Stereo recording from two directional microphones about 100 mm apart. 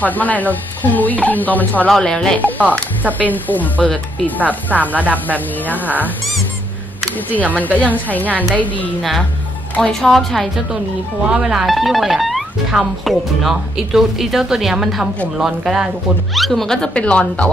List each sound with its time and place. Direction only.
0.0 s speech: 15° left (ahead or behind)
4.5 s speech: 15° right (ahead or behind)
5.7 s speech: 15° left (ahead or behind)
7.5 s speech: 15° left (ahead or behind)
9.8 s speech: 5° left (ahead or behind)